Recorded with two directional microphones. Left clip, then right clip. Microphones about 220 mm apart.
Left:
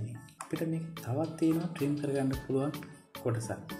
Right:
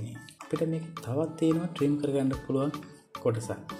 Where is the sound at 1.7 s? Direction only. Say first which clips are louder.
Right 5 dB; 25° right (ahead or behind).